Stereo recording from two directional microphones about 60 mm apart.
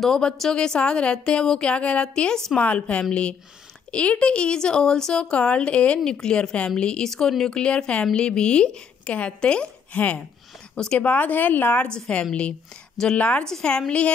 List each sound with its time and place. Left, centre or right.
0.0 s a woman's voice: centre
2.6 s a woman's voice: left
11.9 s a woman's voice: centre